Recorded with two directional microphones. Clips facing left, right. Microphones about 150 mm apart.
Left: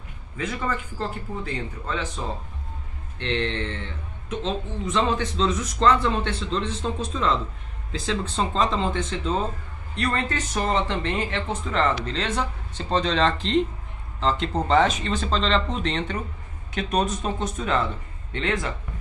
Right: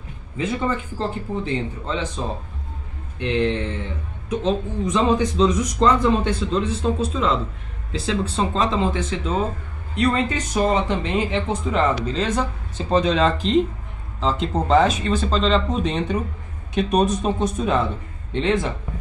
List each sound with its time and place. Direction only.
0.4 s speech: 25° right (ahead or behind)